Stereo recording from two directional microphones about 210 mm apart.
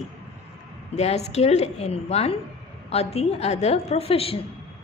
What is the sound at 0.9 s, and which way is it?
A woman's voice, 30° left (ahead or behind).